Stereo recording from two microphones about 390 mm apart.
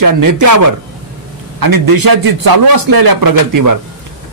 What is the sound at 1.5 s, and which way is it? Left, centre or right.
Speech, right.